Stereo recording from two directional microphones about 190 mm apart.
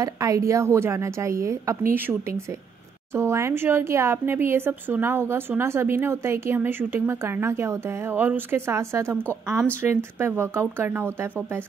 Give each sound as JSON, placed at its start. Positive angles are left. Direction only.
{"t": 0.0, "sound": "speech", "side_deg": -15}